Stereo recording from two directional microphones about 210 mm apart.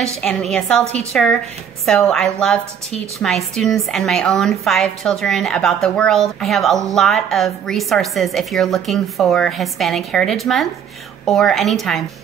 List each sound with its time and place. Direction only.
0.2 s a woman's voice: centre (ahead or behind)